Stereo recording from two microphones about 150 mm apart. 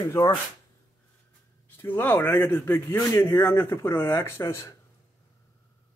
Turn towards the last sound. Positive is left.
turn(degrees=20)  # may be behind; listen again after turning